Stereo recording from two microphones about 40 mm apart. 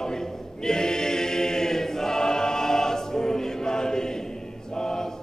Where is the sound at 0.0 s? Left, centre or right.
Centre.